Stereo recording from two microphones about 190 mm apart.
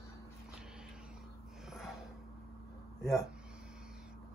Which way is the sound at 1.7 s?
Centre (ahead or behind).